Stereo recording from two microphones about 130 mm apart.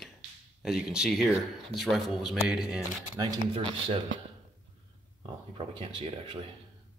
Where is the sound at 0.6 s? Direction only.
5° right (ahead or behind).